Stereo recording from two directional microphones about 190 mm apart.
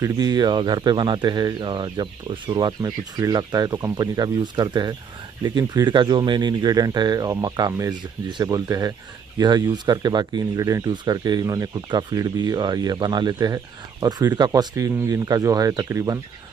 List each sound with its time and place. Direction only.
0.0 s speech: 20° right (ahead or behind)